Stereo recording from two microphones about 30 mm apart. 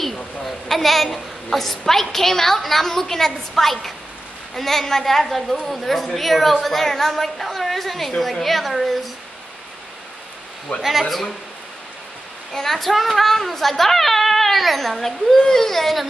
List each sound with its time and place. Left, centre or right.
0.0 s a woman's voice: centre
10.8 s a man's voice: centre
12.5 s a woman's voice: centre
15.3 s a woman's voice: centre